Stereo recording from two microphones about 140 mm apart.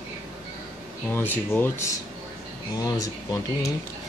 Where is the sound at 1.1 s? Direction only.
15° left (ahead or behind).